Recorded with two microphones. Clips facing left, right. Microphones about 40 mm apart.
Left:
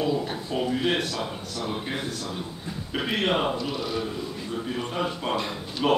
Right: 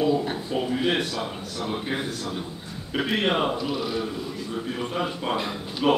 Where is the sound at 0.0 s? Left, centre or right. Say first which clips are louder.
Right 3 dB; centre.